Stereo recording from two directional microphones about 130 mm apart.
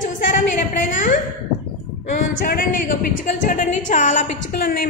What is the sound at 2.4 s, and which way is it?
A woman's voice, 90° left.